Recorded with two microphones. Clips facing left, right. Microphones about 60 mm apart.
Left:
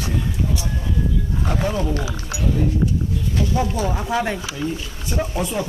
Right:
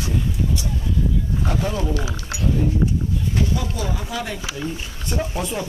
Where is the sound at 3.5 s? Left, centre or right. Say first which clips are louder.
Left 4 dB; left.